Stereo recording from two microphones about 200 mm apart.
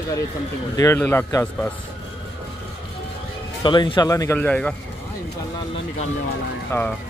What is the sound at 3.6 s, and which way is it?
Speech, 25° left (ahead or behind).